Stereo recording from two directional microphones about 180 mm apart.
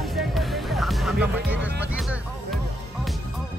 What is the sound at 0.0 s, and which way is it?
Music, centre (ahead or behind).